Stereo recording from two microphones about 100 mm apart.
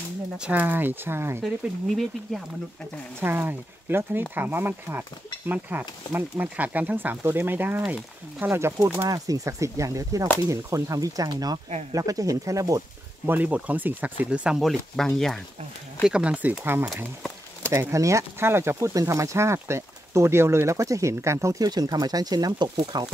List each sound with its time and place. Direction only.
0.4 s speech: 15° right (ahead or behind)
3.2 s speech: 20° right (ahead or behind)
9.1 s speech: 35° right (ahead or behind)
13.3 s speech: 15° right (ahead or behind)
14.6 s speech: centre (ahead or behind)
16.0 s speech: 10° right (ahead or behind); by 23.0 s 45° right (ahead or behind)